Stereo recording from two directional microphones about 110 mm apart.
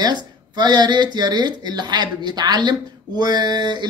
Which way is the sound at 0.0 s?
40° right (ahead or behind).